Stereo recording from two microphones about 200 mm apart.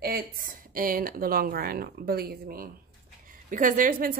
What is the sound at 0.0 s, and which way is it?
A woman's voice, 45° right (ahead or behind).